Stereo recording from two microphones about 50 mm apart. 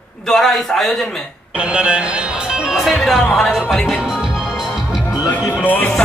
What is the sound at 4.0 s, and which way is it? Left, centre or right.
Music, centre.